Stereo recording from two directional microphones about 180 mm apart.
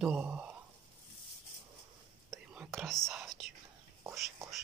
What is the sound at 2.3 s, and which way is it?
Whispering, centre (ahead or behind).